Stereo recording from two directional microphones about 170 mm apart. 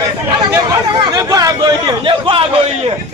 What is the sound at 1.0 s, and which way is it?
A man's voice, 20° right (ahead or behind).